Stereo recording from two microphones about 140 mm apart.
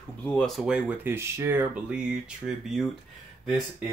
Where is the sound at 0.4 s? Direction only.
Centre (ahead or behind).